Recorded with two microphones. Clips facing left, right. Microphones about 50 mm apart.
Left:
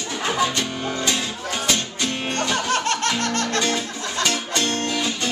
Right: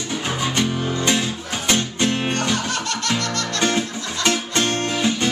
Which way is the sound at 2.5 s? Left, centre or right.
Left.